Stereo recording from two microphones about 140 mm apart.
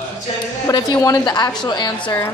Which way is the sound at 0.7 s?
30° left (ahead or behind).